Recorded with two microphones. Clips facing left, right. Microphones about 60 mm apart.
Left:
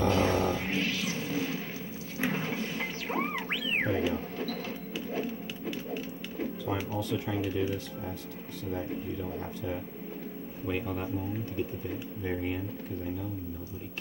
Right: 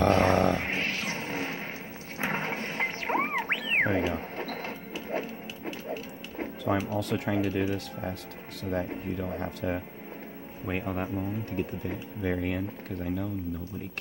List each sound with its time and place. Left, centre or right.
0.0 s a sound: right
2.1 s music: right
6.4 s music: right
7.0 s speech: right
9.0 s speech: right
10.7 s speech: right
11.8 s speech: right